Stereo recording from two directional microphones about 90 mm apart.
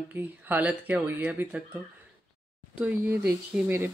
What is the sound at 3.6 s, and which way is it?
Speech, 25° right (ahead or behind).